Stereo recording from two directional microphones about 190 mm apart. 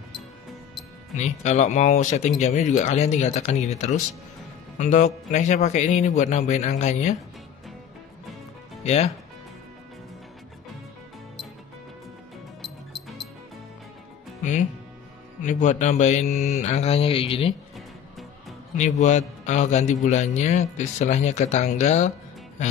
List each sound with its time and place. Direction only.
1.1 s a man's voice: 35° left (ahead or behind)
8.8 s speech: 35° left (ahead or behind)
14.4 s a man's voice: 40° left (ahead or behind)
18.8 s a man's voice: 40° left (ahead or behind)